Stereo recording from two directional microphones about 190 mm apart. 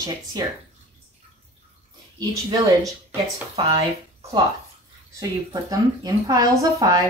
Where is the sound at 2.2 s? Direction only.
20° right (ahead or behind).